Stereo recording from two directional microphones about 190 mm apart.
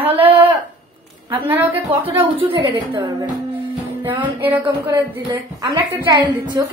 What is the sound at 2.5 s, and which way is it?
Speech, 25° right (ahead or behind).